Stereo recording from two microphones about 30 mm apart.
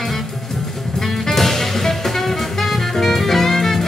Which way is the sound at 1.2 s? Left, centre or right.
Centre.